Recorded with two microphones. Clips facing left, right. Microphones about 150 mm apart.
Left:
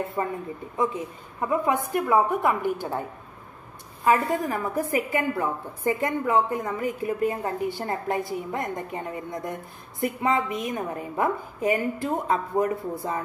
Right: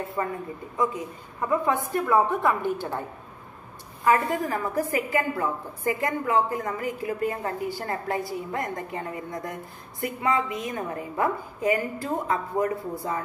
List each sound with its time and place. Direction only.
0.2 s a woman's voice: 20° left (ahead or behind)
1.5 s a woman's voice: 15° left (ahead or behind)
4.0 s a woman's voice: 25° left (ahead or behind)